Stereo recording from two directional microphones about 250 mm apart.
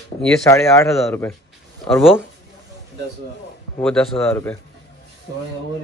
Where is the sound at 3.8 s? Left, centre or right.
Centre.